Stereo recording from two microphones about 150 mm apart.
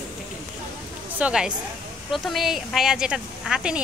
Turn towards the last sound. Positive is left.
turn(degrees=-5)  # may be behind; listen again after turning